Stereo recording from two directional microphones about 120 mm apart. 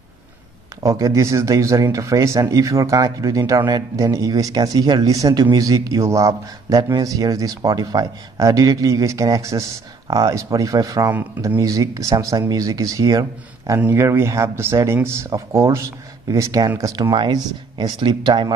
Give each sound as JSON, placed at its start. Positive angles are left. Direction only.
{"t": 0.8, "sound": "speech", "side_deg": -25}
{"t": 13.7, "sound": "speech", "side_deg": -20}